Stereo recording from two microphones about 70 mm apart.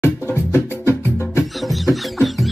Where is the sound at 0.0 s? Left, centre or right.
Left.